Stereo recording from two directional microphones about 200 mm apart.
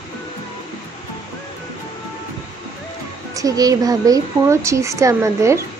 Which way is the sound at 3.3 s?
15° right (ahead or behind).